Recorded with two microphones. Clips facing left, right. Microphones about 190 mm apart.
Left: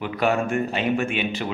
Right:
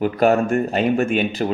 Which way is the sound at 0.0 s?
45° right (ahead or behind).